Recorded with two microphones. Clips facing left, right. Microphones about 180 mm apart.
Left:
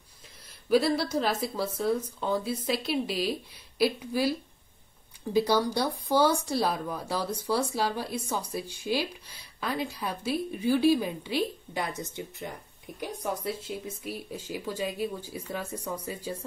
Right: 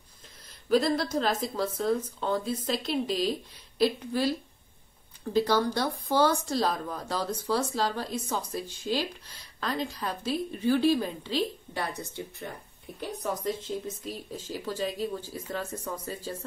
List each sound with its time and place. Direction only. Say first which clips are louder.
0.7 s speech: left 1 dB; 5° left (ahead or behind)